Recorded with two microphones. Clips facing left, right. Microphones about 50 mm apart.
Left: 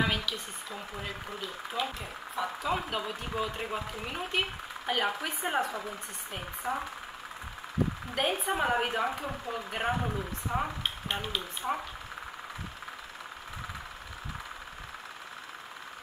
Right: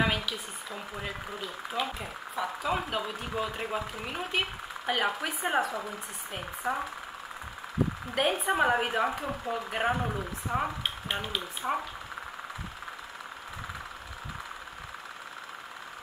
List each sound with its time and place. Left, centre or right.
0.0 s speech: centre
8.1 s speech: centre